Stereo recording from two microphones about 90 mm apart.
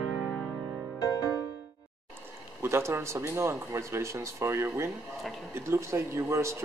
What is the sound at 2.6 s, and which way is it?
Speech, 25° right (ahead or behind).